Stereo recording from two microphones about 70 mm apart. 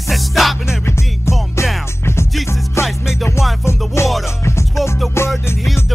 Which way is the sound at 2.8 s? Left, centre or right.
Left.